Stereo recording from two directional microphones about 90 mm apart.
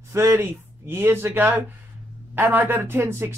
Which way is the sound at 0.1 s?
30° right (ahead or behind).